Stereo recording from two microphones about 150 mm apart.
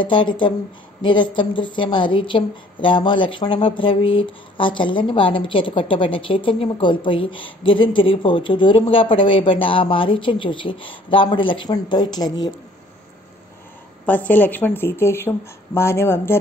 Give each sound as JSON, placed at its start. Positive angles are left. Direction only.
{"t": 0.0, "sound": "a woman's voice", "side_deg": 35}
{"t": 14.0, "sound": "speech", "side_deg": 10}